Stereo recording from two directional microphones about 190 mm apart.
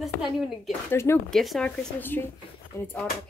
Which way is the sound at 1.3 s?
Centre (ahead or behind).